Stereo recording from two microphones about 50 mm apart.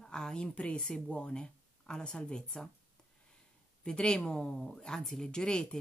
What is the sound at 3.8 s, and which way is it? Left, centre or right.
A woman's voice, centre.